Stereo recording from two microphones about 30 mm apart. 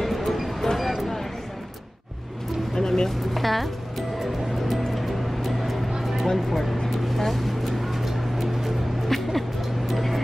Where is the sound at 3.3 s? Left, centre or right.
Centre.